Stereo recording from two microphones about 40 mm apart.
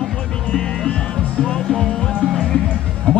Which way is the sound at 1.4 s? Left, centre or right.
Centre.